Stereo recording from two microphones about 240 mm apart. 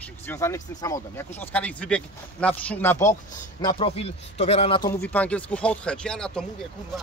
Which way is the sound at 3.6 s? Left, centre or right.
Left.